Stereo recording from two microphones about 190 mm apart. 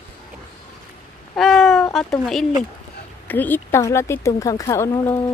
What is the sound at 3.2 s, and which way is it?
Speech, 10° left (ahead or behind).